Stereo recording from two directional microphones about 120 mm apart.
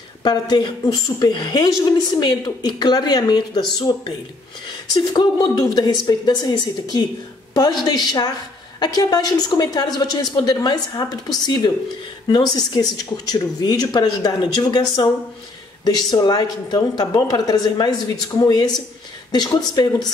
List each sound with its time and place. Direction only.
0.2 s a woman's voice: 35° left (ahead or behind)
4.9 s a woman's voice: 35° left (ahead or behind)